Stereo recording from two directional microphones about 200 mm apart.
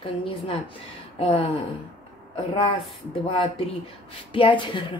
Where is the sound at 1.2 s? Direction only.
30° left (ahead or behind).